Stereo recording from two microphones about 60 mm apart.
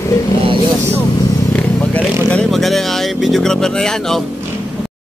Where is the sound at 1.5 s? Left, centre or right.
Left.